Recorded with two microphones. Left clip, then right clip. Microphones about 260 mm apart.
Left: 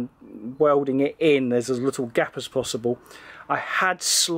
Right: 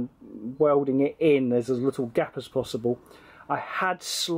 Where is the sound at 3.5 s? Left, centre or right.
Centre.